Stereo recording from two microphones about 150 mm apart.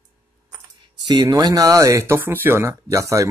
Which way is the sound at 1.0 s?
25° right (ahead or behind).